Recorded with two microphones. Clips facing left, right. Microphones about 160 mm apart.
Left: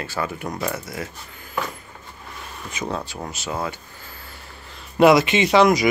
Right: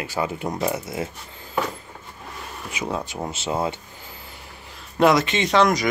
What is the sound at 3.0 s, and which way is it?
Speech, 20° right (ahead or behind).